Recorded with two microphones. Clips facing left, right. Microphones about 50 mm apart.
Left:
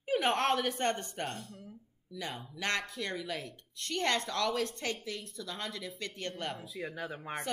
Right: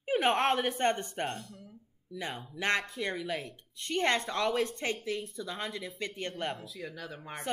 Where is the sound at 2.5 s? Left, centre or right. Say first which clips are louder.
Right 4 dB; right.